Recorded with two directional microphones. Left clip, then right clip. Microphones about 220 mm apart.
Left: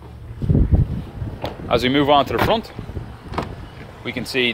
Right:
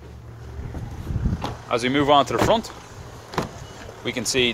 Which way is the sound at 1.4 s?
20° left (ahead or behind).